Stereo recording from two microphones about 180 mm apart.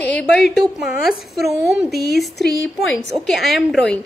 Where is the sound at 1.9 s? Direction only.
60° left (ahead or behind).